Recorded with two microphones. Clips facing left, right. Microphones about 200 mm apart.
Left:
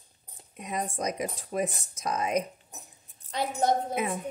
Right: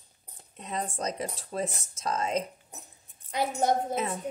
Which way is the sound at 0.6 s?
10° left (ahead or behind).